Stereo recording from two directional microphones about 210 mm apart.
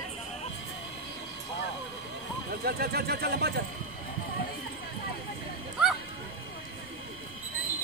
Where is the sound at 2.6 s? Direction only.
50° right (ahead or behind).